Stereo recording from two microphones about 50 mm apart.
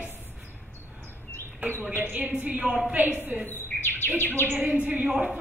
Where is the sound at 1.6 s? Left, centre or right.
Right.